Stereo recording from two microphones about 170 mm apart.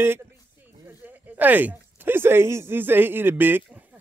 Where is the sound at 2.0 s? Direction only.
15° right (ahead or behind).